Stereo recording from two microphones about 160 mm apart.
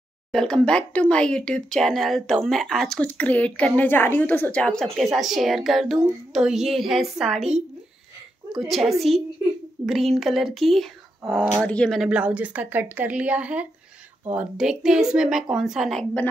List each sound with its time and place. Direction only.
0.3 s speech: 5° left (ahead or behind)
8.5 s speech: centre (ahead or behind)